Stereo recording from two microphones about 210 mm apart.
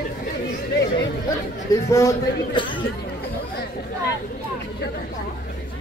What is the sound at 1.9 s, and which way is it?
Speech, 20° left (ahead or behind).